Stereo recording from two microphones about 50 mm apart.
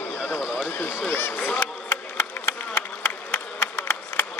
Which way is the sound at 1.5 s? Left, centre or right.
Left.